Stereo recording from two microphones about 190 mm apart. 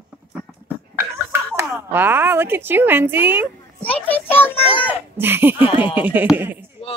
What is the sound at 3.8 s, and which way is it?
Speech, 10° left (ahead or behind).